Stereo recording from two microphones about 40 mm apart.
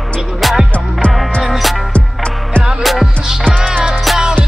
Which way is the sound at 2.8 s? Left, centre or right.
Centre.